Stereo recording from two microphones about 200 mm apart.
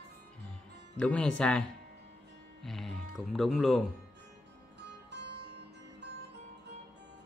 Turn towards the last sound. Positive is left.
turn(degrees=-55)  # may be behind; listen again after turning